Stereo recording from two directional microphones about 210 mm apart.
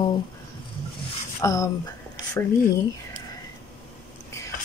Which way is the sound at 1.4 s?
15° left (ahead or behind).